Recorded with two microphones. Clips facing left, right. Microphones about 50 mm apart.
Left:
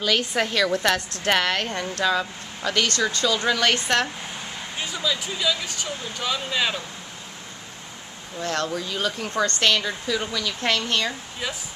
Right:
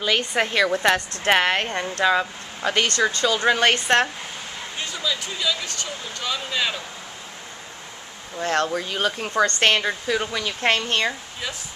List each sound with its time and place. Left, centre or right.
0.4 s speech: centre
4.7 s speech: centre
8.4 s speech: right